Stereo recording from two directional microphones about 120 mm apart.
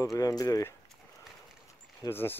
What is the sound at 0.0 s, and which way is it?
Speech, 30° left (ahead or behind).